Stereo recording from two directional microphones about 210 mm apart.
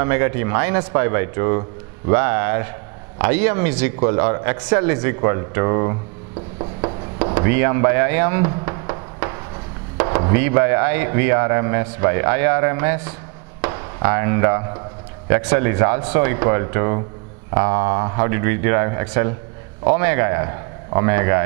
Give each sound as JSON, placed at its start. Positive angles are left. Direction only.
{"t": 0.0, "sound": "speech", "side_deg": -15}
{"t": 6.6, "sound": "a sound", "side_deg": -25}
{"t": 7.3, "sound": "a sound", "side_deg": -15}
{"t": 9.9, "sound": "speech", "side_deg": -20}
{"t": 13.7, "sound": "chop", "side_deg": -25}
{"t": 14.0, "sound": "speech", "side_deg": -15}